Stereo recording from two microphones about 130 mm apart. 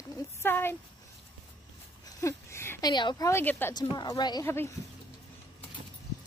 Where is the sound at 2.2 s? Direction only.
20° left (ahead or behind).